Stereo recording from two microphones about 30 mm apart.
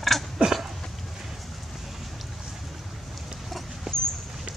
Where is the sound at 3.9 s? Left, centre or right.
Right.